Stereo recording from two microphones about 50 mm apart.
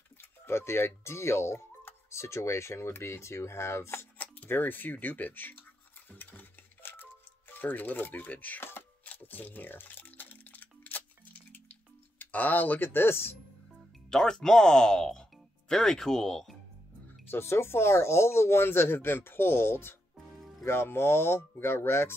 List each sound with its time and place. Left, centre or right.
0.2 s speech: left
4.5 s a sound: left
8.5 s speech: left
9.2 s music: left
12.2 s speech: left
14.1 s speech: centre
17.3 s speech: left
20.3 s music: centre
20.6 s speech: left